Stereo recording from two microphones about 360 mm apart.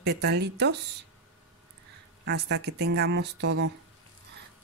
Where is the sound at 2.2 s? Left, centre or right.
Right.